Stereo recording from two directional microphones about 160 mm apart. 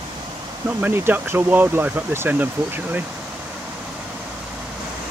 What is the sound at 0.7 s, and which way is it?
Speech, 10° right (ahead or behind).